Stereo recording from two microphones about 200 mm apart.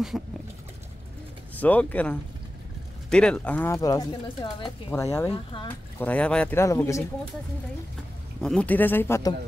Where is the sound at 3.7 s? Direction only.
20° left (ahead or behind).